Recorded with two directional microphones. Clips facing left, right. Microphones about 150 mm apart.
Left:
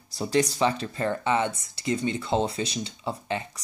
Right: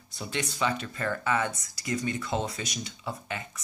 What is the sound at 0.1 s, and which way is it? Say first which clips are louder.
Speech: left 10 dB; 35° left (ahead or behind).